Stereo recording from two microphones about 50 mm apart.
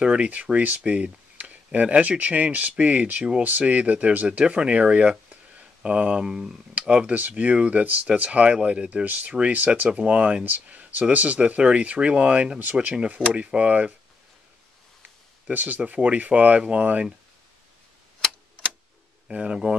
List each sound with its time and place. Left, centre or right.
0.0 s speech: right
6.9 s speech: right
15.5 s speech: right
19.2 s speech: right